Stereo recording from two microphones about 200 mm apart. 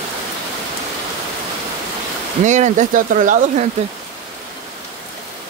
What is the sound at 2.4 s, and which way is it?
Speech, 35° right (ahead or behind).